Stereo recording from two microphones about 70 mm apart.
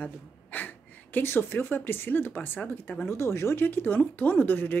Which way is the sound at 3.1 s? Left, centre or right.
Left.